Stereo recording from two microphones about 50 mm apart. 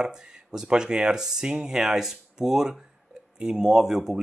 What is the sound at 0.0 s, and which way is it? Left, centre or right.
Speech, centre.